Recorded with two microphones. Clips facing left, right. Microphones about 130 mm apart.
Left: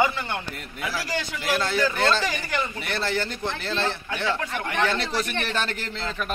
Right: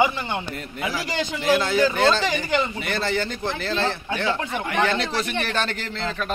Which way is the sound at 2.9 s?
Centre (ahead or behind).